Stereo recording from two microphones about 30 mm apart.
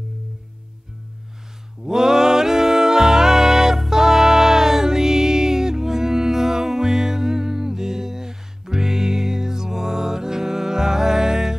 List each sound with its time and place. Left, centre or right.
1.9 s music: centre